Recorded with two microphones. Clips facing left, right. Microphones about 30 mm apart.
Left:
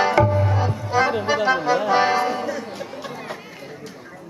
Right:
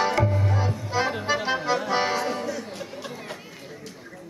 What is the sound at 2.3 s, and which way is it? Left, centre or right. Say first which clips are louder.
Speech: left 4 dB; centre.